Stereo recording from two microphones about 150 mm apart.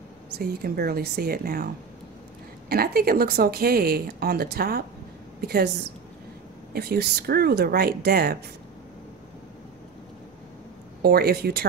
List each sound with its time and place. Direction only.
0.4 s speech: 90° right
2.7 s speech: 90° right
6.7 s speech: 90° right
11.0 s speech: 90° right